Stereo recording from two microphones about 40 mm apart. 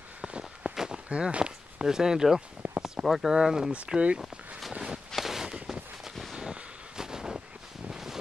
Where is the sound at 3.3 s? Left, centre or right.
Centre.